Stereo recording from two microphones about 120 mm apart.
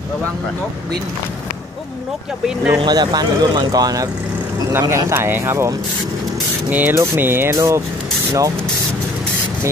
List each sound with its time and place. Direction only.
2.4 s speech: 10° right (ahead or behind)
2.8 s speech: 35° right (ahead or behind)